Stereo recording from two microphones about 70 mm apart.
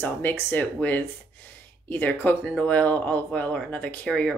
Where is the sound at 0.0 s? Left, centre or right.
Left.